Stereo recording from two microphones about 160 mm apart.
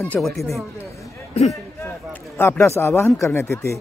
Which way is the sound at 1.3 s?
40° left (ahead or behind).